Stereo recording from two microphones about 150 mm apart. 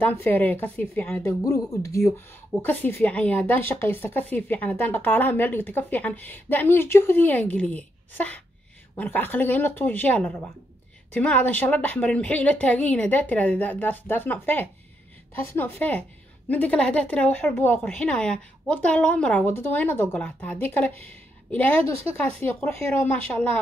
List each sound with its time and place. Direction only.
0.0 s speech: 10° left (ahead or behind)
1.4 s speech: 25° left (ahead or behind)